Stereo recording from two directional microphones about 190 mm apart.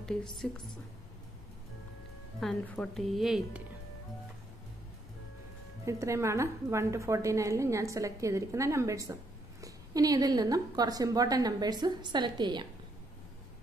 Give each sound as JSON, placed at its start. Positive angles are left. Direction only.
{"t": 0.0, "sound": "speech", "side_deg": 5}
{"t": 2.4, "sound": "a woman's voice", "side_deg": 5}
{"t": 5.9, "sound": "a woman's voice", "side_deg": -15}